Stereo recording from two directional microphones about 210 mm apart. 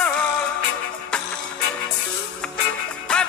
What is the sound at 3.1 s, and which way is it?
Music, 5° left (ahead or behind).